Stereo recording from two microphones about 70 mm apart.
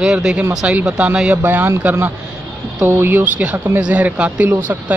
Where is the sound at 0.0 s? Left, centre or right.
Centre.